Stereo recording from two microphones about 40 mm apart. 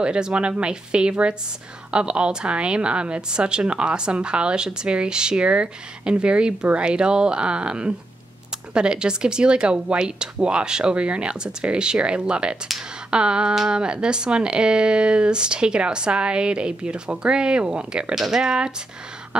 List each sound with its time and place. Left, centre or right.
0.0 s speech: right
18.1 s speech: centre